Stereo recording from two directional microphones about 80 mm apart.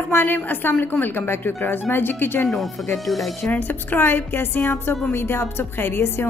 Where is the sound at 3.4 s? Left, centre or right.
Left.